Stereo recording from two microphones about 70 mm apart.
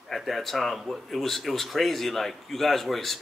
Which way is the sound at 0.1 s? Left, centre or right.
Centre.